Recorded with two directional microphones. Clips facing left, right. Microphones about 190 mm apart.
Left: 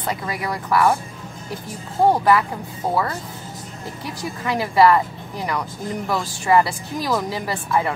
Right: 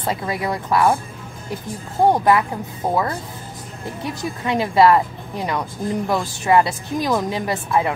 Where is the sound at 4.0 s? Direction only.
25° right (ahead or behind).